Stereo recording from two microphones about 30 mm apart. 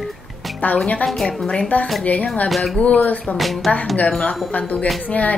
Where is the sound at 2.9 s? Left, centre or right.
Left.